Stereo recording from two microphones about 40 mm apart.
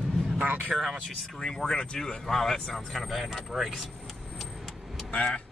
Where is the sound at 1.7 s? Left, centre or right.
Left.